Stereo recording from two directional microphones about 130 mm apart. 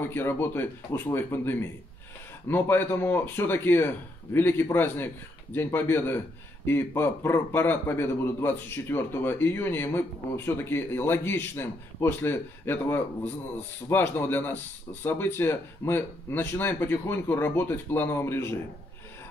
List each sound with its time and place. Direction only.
0.0 s speech: 15° left (ahead or behind)